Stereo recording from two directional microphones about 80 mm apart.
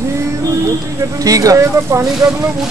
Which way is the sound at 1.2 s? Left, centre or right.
Right.